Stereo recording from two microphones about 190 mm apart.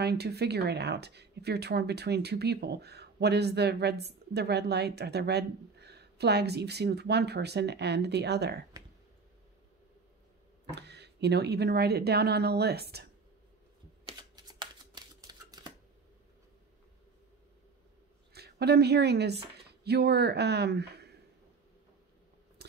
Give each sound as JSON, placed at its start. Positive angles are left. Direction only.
{"t": 0.0, "sound": "speech", "side_deg": -60}
{"t": 8.8, "sound": "a sound", "side_deg": -15}
{"t": 10.7, "sound": "speech", "side_deg": -60}
{"t": 14.0, "sound": "shuffling cards", "side_deg": -20}
{"t": 18.3, "sound": "speech", "side_deg": -60}
{"t": 22.6, "sound": "a sound", "side_deg": -60}